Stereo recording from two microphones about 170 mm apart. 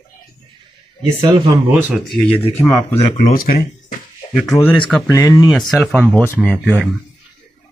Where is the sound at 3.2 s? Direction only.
60° left (ahead or behind).